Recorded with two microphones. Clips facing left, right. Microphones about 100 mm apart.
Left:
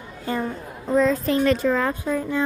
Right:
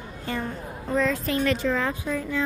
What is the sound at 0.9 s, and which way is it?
A child's voice, 30° left (ahead or behind).